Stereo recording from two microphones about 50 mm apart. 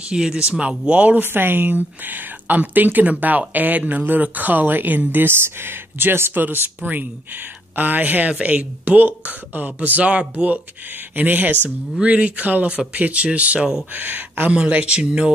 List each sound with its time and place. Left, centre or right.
0.1 s speech: centre
1.2 s speech: right
14.5 s speech: right